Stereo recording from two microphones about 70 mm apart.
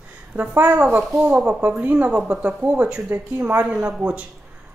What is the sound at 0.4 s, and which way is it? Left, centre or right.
Speech, right.